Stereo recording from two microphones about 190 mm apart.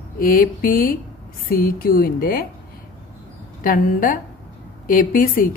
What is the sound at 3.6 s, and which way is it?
Speech, 45° left (ahead or behind).